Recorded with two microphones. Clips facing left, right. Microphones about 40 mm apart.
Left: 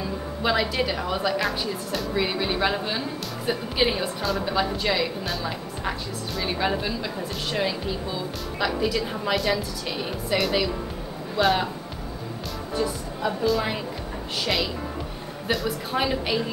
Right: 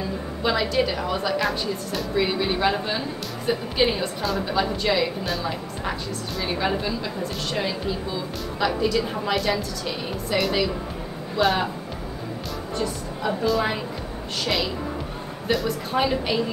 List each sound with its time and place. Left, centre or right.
0.4 s a woman's voice: centre
13.2 s a woman's voice: centre